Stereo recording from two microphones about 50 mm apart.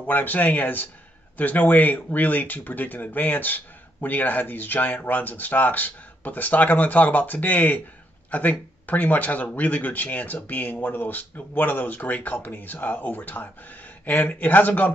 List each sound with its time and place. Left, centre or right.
0.0 s speech: left